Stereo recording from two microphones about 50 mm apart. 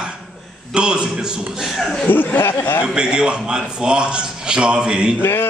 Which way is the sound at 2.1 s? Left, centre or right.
Left.